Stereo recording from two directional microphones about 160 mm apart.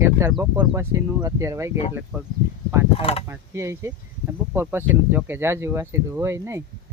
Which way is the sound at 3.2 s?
15° right (ahead or behind).